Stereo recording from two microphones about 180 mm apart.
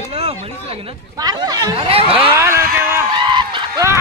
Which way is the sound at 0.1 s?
35° right (ahead or behind).